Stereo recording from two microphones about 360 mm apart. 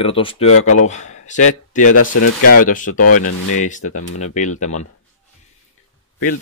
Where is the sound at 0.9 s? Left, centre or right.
Centre.